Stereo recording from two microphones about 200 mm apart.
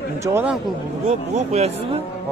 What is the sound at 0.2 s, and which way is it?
Speech, 10° right (ahead or behind).